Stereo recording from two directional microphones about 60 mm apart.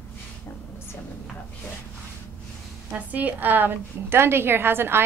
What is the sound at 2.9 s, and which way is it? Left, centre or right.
A woman's voice, right.